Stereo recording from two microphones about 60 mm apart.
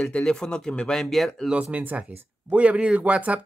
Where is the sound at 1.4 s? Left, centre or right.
Right.